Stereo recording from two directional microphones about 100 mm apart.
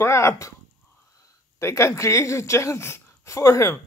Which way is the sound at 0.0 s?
30° left (ahead or behind).